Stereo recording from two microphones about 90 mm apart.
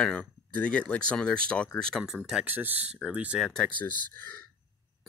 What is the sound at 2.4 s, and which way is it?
Speech, 20° right (ahead or behind).